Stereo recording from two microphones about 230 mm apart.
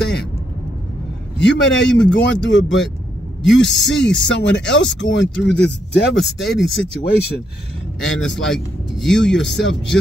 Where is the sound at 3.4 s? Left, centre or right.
Left.